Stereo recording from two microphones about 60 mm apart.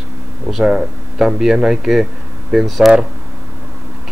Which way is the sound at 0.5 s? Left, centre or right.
Centre.